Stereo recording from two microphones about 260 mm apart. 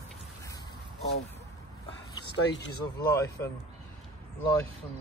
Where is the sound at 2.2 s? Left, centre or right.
Left.